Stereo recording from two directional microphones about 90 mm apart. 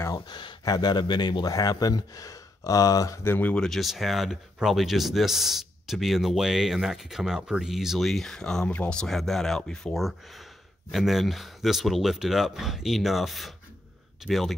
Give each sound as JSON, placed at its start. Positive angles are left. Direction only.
{"t": 0.1, "sound": "a sound", "side_deg": 60}
{"t": 0.7, "sound": "speech", "side_deg": 50}
{"t": 3.3, "sound": "speech", "side_deg": 20}